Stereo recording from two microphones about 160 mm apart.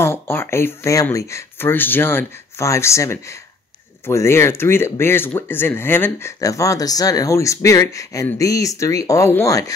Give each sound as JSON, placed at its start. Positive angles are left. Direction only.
{"t": 0.0, "sound": "speech", "side_deg": 15}